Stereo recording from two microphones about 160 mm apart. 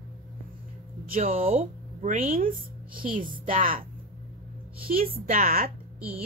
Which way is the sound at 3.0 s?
35° right (ahead or behind).